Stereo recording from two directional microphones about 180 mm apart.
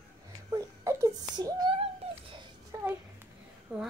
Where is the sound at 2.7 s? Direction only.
20° right (ahead or behind).